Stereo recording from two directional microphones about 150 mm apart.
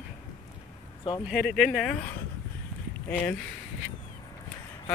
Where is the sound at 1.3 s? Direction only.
Centre (ahead or behind).